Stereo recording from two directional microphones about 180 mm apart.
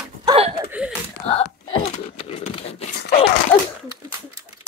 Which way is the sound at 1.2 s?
30° left (ahead or behind).